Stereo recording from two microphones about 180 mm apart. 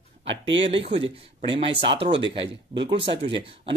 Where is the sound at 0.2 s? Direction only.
30° right (ahead or behind).